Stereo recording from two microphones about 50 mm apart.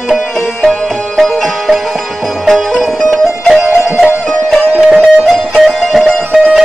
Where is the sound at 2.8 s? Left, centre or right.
Centre.